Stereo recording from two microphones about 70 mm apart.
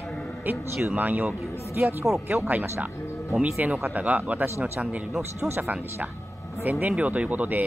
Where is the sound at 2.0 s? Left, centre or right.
Centre.